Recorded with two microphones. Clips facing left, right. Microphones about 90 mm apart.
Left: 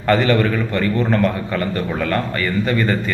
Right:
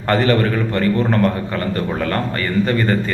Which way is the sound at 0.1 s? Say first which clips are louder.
Even; 35° right (ahead or behind).